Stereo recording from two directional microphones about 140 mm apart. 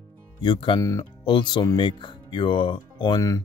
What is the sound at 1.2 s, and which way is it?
Speech, 35° left (ahead or behind).